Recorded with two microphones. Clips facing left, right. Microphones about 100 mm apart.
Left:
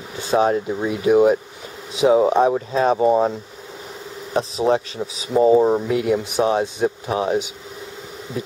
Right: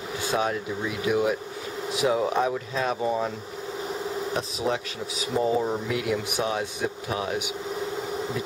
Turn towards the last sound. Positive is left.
turn(degrees=30)  # may be behind; listen again after turning